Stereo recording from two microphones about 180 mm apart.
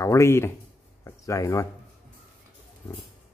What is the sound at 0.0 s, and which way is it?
Speech, 15° left (ahead or behind).